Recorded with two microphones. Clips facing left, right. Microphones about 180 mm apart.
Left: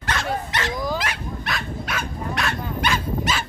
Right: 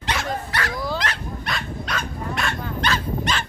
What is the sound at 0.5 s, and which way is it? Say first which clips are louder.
Dog: even; 20° left (ahead or behind).